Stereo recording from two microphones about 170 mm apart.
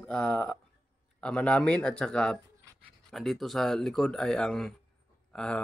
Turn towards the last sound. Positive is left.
turn(degrees=5)  # may be behind; listen again after turning